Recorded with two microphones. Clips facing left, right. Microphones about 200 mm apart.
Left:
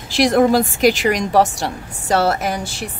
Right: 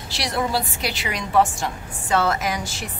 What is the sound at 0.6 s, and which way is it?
Speech, 90° left.